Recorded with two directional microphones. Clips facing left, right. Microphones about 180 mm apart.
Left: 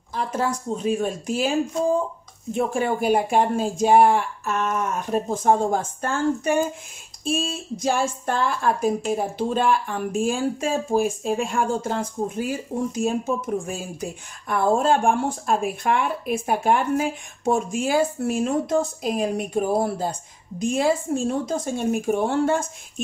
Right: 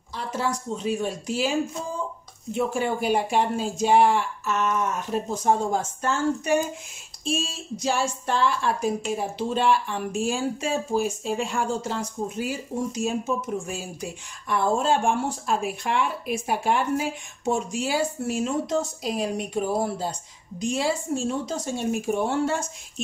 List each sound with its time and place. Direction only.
0.1 s speech: 50° left (ahead or behind)
2.5 s speech: 50° left (ahead or behind)